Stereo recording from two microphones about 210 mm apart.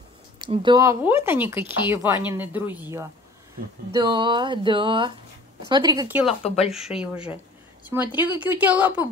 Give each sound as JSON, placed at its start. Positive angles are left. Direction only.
{"t": 0.4, "sound": "speech", "side_deg": -20}
{"t": 6.2, "sound": "speech", "side_deg": 30}
{"t": 6.7, "sound": "speech", "side_deg": -5}